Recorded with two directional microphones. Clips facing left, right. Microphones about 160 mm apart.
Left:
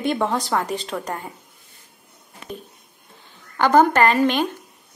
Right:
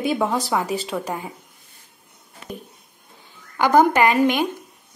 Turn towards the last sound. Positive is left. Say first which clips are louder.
# even
turn(degrees=-10)  # may be behind; listen again after turning